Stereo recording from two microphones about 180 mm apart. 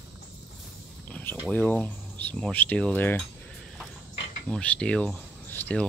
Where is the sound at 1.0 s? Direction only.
10° left (ahead or behind).